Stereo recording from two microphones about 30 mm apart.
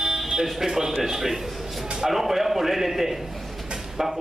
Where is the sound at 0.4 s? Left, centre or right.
Centre.